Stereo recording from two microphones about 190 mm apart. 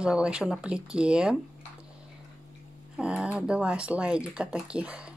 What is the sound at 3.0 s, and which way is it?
Speech, 5° right (ahead or behind).